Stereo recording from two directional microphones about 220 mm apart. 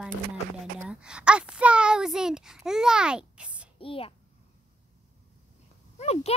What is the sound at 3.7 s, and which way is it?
Speech, 25° left (ahead or behind).